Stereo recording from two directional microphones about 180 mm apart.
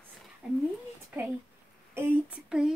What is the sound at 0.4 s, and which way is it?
Cat, 5° right (ahead or behind).